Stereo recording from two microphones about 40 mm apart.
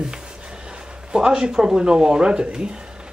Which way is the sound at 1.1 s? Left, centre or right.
Centre.